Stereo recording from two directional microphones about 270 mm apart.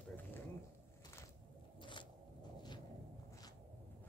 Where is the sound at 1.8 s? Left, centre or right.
Centre.